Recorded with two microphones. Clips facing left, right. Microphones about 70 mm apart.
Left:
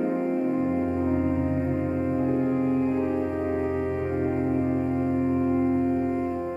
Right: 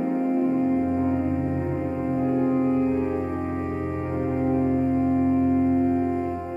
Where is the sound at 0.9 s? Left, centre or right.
Centre.